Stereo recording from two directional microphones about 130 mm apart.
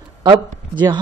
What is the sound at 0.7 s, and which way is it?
Speech, 35° right (ahead or behind).